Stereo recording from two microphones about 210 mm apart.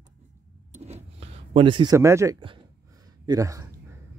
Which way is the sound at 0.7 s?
30° right (ahead or behind).